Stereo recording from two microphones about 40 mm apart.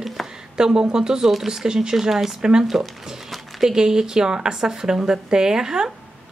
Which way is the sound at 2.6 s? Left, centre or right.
Centre.